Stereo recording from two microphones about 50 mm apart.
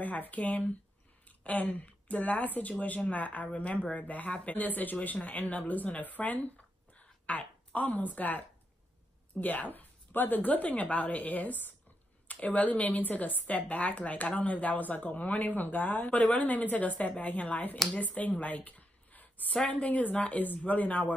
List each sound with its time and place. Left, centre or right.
0.0 s a woman's voice: left